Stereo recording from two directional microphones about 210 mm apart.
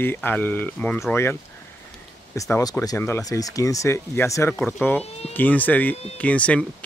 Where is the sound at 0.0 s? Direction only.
10° left (ahead or behind).